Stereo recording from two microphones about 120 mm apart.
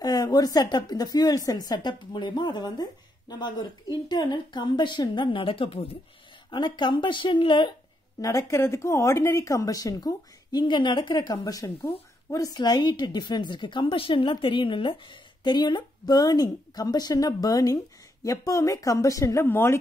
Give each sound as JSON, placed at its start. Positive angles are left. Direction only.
{"t": 0.0, "sound": "speech", "side_deg": 35}
{"t": 6.5, "sound": "speech", "side_deg": 40}
{"t": 8.2, "sound": "speech", "side_deg": 25}